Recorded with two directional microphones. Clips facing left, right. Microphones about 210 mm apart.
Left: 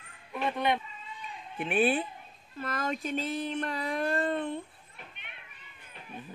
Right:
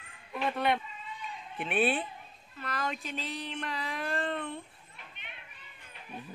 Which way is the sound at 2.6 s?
45° left (ahead or behind).